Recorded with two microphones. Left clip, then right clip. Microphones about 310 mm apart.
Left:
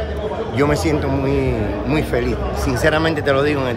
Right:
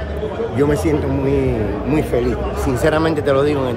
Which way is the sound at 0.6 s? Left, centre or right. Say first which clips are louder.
Right 1 dB; centre.